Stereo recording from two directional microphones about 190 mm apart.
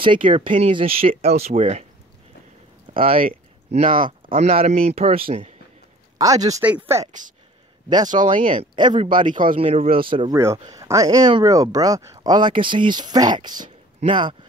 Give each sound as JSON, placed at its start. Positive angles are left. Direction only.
{"t": 0.0, "sound": "speech", "side_deg": -25}
{"t": 0.5, "sound": "speech", "side_deg": -40}
{"t": 0.7, "sound": "speech", "side_deg": -30}
{"t": 2.9, "sound": "speech", "side_deg": -30}
{"t": 6.1, "sound": "speech", "side_deg": -20}
{"t": 7.1, "sound": "speech", "side_deg": -40}
{"t": 8.5, "sound": "speech", "side_deg": -25}
{"t": 10.3, "sound": "speech", "side_deg": -15}